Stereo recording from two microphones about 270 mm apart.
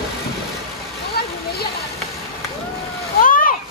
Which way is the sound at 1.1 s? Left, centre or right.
Left.